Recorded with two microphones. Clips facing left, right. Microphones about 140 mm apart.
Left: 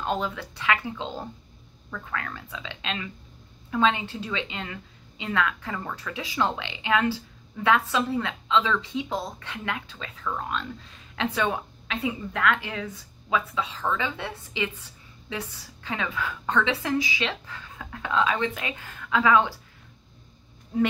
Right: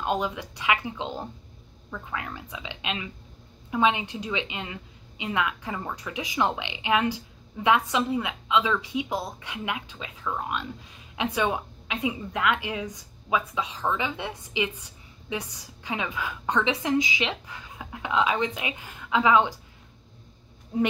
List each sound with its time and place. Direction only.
0.0 s a woman's voice: 15° right (ahead or behind)
20.7 s speech: 20° right (ahead or behind)